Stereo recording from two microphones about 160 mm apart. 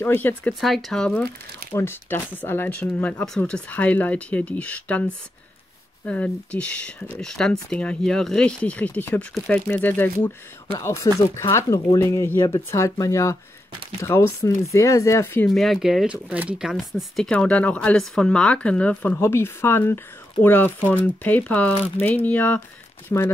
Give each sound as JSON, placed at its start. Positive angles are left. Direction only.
{"t": 0.0, "sound": "speech", "side_deg": 10}
{"t": 0.6, "sound": "speech", "side_deg": 0}
{"t": 15.4, "sound": "speech", "side_deg": 0}